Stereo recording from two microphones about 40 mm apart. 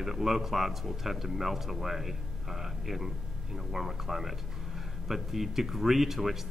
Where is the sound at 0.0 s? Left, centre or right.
Centre.